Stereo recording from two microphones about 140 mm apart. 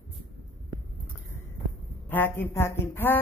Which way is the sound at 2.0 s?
15° left (ahead or behind).